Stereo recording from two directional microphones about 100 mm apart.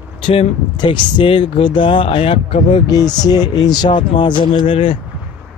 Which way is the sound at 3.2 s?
40° left (ahead or behind).